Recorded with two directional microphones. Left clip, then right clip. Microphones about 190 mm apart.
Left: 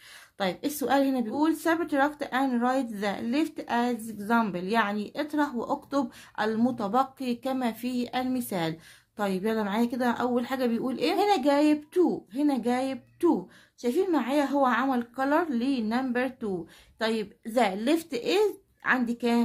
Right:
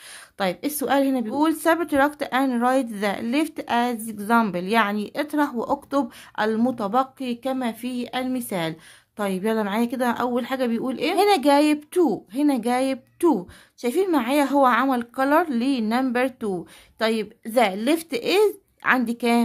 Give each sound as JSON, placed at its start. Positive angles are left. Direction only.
{"t": 0.4, "sound": "speech", "side_deg": -30}
{"t": 11.1, "sound": "speech", "side_deg": -40}